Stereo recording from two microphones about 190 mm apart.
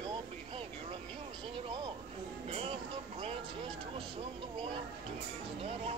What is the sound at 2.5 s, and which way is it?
Music, 30° right (ahead or behind).